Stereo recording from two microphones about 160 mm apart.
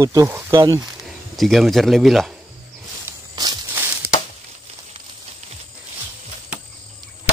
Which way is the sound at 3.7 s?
15° right (ahead or behind).